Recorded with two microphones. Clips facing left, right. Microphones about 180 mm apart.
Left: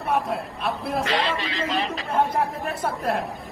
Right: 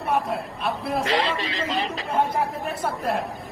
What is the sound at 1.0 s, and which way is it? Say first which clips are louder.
Speech: right 2 dB; 25° right (ahead or behind).